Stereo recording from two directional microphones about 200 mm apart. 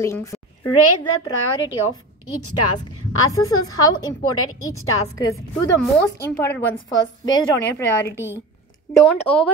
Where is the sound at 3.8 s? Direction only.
20° left (ahead or behind).